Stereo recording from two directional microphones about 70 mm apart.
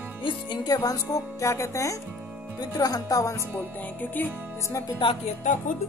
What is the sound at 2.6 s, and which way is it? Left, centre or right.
Speech, left.